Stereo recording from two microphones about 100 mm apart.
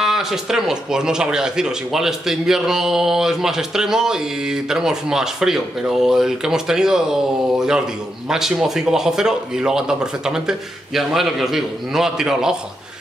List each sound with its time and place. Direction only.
0.0 s speech: 5° right (ahead or behind)